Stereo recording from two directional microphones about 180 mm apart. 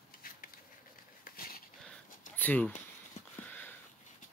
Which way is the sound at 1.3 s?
55° left (ahead or behind).